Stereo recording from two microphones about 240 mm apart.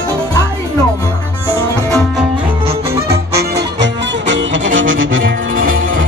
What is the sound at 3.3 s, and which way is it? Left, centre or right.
Music, right.